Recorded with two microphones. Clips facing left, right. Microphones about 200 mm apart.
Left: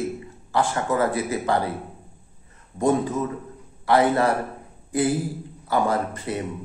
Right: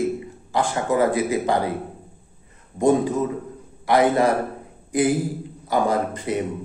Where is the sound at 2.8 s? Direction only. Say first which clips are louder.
Right 3 dB; 15° right (ahead or behind).